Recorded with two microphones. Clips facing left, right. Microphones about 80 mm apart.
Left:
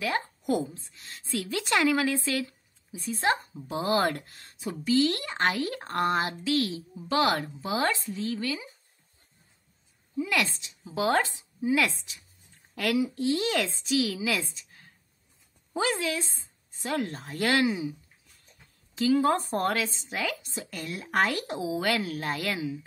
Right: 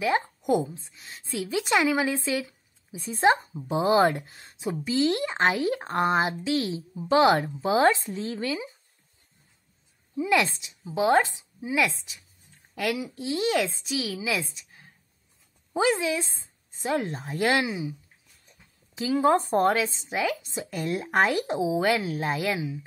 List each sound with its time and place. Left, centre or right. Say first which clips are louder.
0.0 s a woman's voice: right 4 dB; centre
10.1 s speech: right 5 dB; right
11.0 s speech: right 4 dB; centre
15.7 s speech: right 4 dB; centre
18.9 s speech: right 2 dB; centre